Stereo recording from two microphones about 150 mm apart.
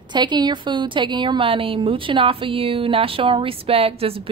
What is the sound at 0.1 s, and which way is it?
A woman's voice, 30° right (ahead or behind).